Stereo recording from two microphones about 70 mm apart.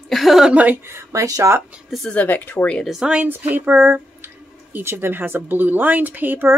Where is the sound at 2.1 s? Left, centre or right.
Left.